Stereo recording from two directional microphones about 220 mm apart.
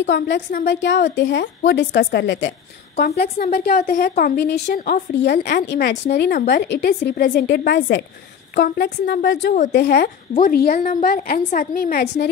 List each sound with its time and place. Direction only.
0.0 s a woman's voice: 50° left (ahead or behind)
3.5 s a woman's voice: 45° left (ahead or behind)